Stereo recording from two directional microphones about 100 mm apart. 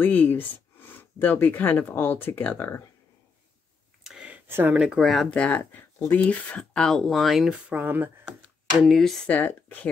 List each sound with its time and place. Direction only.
0.0 s speech: 20° left (ahead or behind)
4.0 s a sound: 5° right (ahead or behind)
4.5 s speech: 20° right (ahead or behind)
4.7 s speech: 5° right (ahead or behind)
5.3 s speech: 15° left (ahead or behind)
7.7 s speech: 20° right (ahead or behind)
8.3 s speech: centre (ahead or behind); by 9.8 s 15° left (ahead or behind)